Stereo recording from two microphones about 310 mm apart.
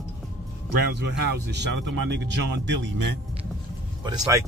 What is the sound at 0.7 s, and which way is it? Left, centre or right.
Speech, right.